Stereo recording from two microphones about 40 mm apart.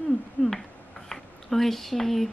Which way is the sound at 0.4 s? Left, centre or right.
Left.